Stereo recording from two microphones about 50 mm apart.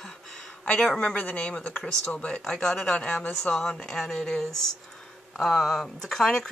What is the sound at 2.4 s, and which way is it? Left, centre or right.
Speech, centre.